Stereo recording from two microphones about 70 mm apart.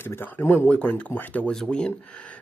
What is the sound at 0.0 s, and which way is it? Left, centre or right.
Speech, left.